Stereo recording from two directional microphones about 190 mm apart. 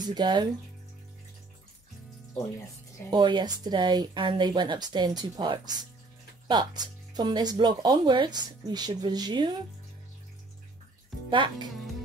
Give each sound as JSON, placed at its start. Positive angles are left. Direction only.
{"t": 0.0, "sound": "speech", "side_deg": -20}
{"t": 3.1, "sound": "speech", "side_deg": -25}
{"t": 11.2, "sound": "speech", "side_deg": -25}